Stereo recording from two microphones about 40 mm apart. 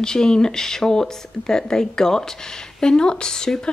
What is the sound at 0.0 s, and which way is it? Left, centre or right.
Speech, centre.